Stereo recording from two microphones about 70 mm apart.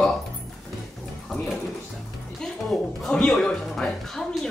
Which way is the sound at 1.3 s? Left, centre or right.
Centre.